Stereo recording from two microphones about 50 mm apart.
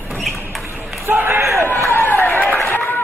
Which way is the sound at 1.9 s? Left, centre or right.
Left.